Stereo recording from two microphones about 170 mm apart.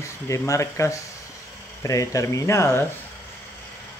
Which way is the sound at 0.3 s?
20° left (ahead or behind).